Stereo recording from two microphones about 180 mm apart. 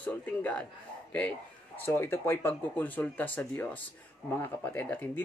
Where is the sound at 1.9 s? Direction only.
15° left (ahead or behind).